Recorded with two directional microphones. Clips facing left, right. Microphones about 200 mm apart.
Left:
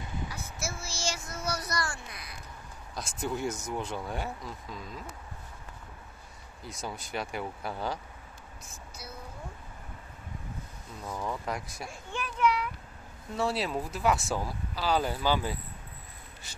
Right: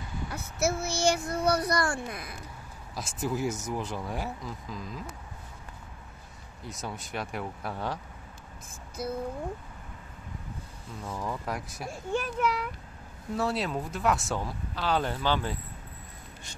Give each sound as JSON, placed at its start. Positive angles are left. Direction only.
{"t": 0.3, "sound": "speech", "side_deg": -60}
{"t": 3.0, "sound": "speech", "side_deg": 0}
{"t": 6.6, "sound": "speech", "side_deg": 0}
{"t": 9.0, "sound": "speech", "side_deg": -50}
{"t": 11.1, "sound": "speech", "side_deg": 0}
{"t": 12.1, "sound": "a child's voice", "side_deg": -40}
{"t": 13.4, "sound": "speech", "side_deg": 0}